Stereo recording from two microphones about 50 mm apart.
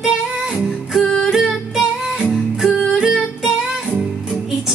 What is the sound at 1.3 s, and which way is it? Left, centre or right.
Music, centre.